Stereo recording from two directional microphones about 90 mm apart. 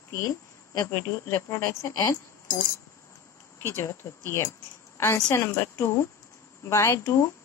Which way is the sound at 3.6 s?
30° left (ahead or behind).